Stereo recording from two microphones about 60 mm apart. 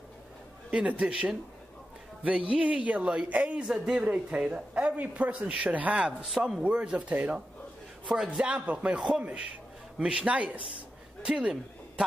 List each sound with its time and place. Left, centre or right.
0.7 s a man's voice: right
3.6 s a man's voice: centre
4.0 s a man's voice: centre
8.4 s a man's voice: right